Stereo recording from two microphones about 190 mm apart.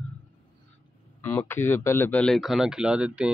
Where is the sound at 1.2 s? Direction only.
10° left (ahead or behind); by 3.3 s 5° right (ahead or behind).